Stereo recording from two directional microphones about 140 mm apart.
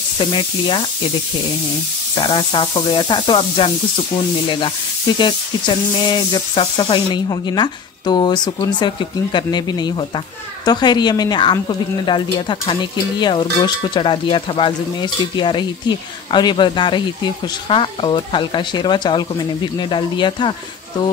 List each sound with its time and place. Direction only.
0.2 s speech: 35° left (ahead or behind)
2.1 s speech: 35° left (ahead or behind)